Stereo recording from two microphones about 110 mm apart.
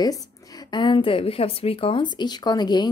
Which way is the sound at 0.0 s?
35° left (ahead or behind).